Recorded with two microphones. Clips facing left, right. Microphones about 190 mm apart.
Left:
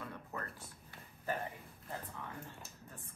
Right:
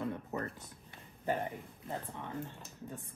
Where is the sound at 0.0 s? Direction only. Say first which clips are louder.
Right 8 dB; 20° right (ahead or behind).